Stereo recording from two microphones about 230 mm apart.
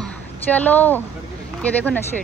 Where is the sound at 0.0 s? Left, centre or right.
Centre.